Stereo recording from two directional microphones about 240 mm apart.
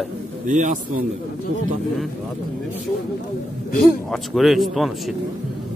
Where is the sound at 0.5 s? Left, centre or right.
Right.